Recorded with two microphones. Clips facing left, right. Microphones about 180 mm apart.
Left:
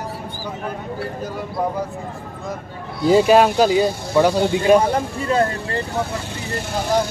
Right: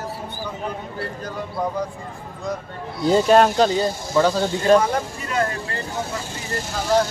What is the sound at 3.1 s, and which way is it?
Speech, 5° left (ahead or behind).